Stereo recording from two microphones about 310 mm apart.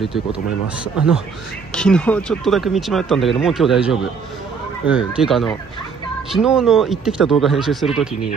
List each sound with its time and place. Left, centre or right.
0.0 s speech: centre
1.7 s speech: centre